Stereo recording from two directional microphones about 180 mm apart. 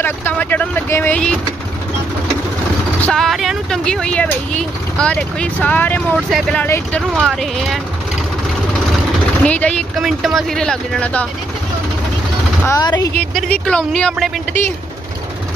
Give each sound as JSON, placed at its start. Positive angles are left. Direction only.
{"t": 0.0, "sound": "speech", "side_deg": 10}
{"t": 3.0, "sound": "speech", "side_deg": 5}
{"t": 7.0, "sound": "speech", "side_deg": -10}
{"t": 9.4, "sound": "speech", "side_deg": 5}
{"t": 12.6, "sound": "speech", "side_deg": 20}
{"t": 13.1, "sound": "speech", "side_deg": 5}